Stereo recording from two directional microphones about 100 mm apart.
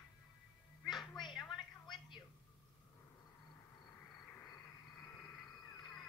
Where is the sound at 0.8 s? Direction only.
Centre (ahead or behind).